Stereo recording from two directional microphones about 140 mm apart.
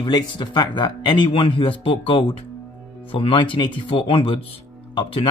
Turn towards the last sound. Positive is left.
turn(degrees=40)  # may be behind; listen again after turning